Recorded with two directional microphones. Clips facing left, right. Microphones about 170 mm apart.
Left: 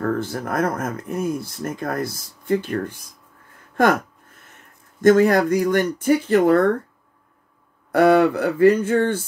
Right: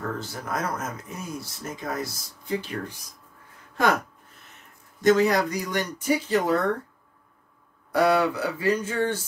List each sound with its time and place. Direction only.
0.0 s speech: 55° left (ahead or behind)
5.0 s speech: 50° left (ahead or behind)
7.9 s speech: 55° left (ahead or behind)